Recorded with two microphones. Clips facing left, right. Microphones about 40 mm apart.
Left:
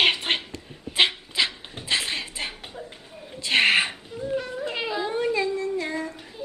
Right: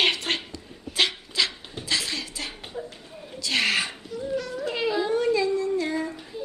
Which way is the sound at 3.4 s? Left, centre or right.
Left.